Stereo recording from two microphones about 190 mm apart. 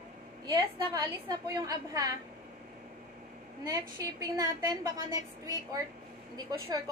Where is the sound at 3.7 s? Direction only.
20° right (ahead or behind).